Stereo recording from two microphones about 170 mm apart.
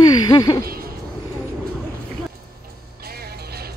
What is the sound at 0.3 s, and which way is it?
Speech, 20° left (ahead or behind).